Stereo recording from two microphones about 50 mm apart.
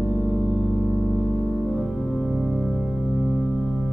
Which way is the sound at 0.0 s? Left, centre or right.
Centre.